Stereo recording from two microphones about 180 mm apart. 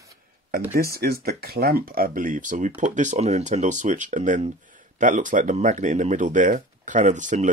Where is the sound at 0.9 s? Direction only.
60° right (ahead or behind).